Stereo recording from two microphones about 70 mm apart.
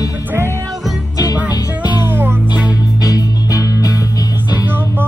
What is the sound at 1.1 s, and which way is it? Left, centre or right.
Music, left.